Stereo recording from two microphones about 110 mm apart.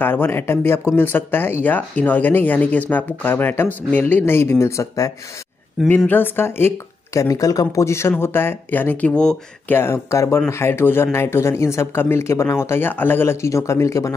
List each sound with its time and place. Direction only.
0.0 s speech: 20° left (ahead or behind)
6.0 s speech: 20° left (ahead or behind)
7.2 s speech: 30° left (ahead or behind); by 9.4 s 10° left (ahead or behind)
9.7 s speech: 20° left (ahead or behind)